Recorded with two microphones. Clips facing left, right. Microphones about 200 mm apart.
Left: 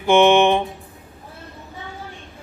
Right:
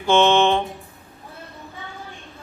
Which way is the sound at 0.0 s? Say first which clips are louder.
Left 3 dB; 15° left (ahead or behind).